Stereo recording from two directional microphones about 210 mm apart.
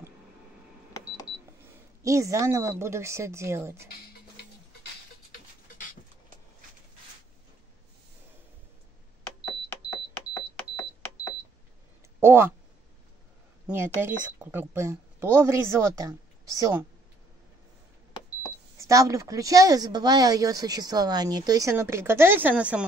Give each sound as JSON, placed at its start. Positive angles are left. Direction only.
{"t": 2.0, "sound": "speech", "side_deg": -15}
{"t": 5.7, "sound": "dog", "side_deg": 40}
{"t": 10.1, "sound": "cash register", "side_deg": 10}
{"t": 12.2, "sound": "a sound", "side_deg": -10}
{"t": 14.0, "sound": "speech", "side_deg": -10}
{"t": 18.8, "sound": "speech", "side_deg": -15}